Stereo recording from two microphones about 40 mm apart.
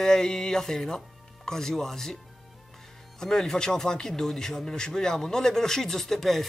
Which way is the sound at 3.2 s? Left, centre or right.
Centre.